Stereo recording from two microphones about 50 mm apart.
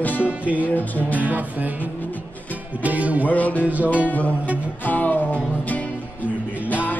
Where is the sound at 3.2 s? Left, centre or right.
Left.